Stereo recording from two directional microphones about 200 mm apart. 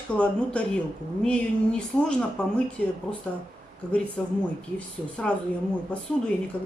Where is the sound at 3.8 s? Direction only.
5° left (ahead or behind).